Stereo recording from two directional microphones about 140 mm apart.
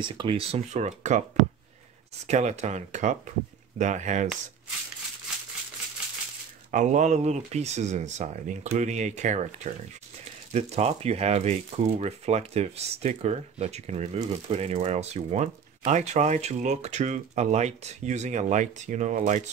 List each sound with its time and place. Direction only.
0.0 s speech: 35° right (ahead or behind); by 1.2 s 55° right (ahead or behind)
2.2 s speech: 55° right (ahead or behind)
6.7 s speech: 60° right (ahead or behind)